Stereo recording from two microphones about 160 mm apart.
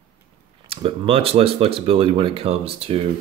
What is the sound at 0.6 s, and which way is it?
Speech, 35° right (ahead or behind).